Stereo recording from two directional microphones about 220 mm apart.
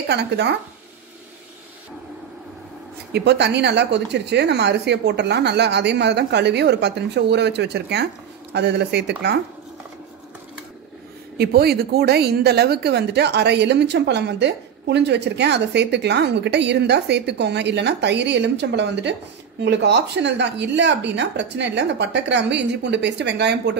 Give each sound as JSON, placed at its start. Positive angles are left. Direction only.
{"t": 0.1, "sound": "a woman's voice", "side_deg": -50}
{"t": 3.1, "sound": "a woman's voice", "side_deg": -50}
{"t": 11.3, "sound": "a woman's voice", "side_deg": -45}